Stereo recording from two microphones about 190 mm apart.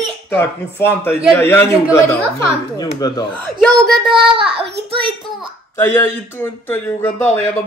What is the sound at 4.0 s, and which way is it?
Child singing, 25° right (ahead or behind).